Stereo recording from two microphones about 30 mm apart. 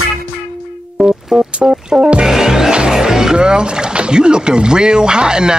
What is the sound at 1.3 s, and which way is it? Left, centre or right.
Music, right.